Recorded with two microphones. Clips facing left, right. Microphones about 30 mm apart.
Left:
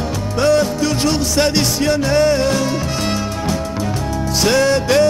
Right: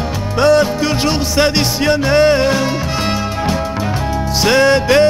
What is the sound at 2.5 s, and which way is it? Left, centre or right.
Music, right.